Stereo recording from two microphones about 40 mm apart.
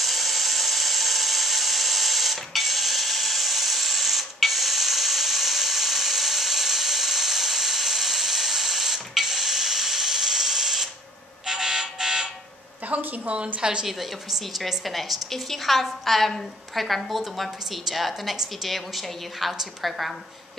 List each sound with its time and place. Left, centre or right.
0.0 s tools: centre
11.4 s alarm: centre
12.9 s a sound: right
13.6 s a woman's voice: right
14.5 s a woman's voice: centre